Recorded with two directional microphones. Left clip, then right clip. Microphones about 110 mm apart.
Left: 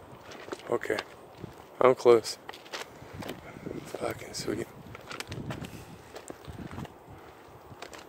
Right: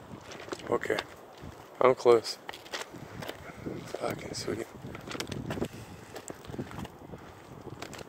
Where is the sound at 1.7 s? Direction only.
90° left.